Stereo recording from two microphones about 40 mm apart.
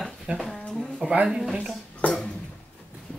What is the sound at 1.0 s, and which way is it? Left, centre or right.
Speech, centre.